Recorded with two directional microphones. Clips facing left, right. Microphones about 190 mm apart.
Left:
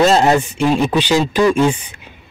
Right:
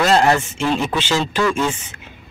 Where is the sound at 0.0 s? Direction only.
20° left (ahead or behind).